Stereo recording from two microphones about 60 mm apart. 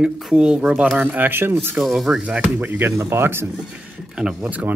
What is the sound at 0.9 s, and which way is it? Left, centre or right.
Speech, right.